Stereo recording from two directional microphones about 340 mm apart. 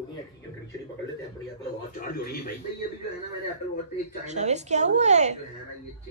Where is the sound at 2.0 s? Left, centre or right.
Left.